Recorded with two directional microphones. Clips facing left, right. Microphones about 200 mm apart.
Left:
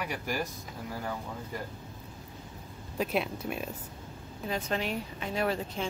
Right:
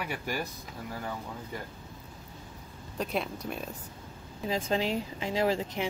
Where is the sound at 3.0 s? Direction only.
5° left (ahead or behind).